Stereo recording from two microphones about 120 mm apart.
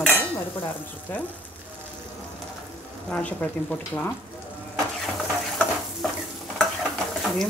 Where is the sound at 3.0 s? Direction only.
10° left (ahead or behind).